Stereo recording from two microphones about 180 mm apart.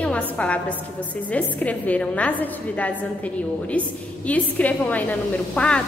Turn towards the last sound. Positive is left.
turn(degrees=5)  # may be behind; listen again after turning